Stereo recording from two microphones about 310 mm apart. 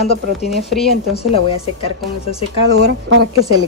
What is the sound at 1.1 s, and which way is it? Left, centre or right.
Speech, centre.